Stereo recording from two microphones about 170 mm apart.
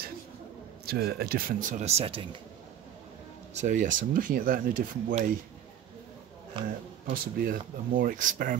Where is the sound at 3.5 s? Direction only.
45° right (ahead or behind).